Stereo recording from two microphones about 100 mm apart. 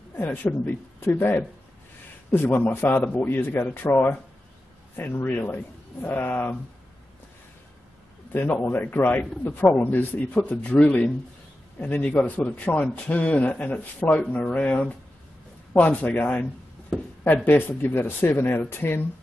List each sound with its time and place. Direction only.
0.1 s a man's voice: 20° left (ahead or behind)
8.3 s a man's voice: 20° left (ahead or behind)